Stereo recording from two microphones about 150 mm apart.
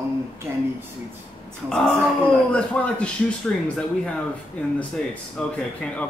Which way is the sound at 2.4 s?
10° left (ahead or behind).